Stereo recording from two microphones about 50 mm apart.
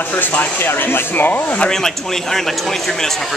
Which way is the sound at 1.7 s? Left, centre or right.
Centre.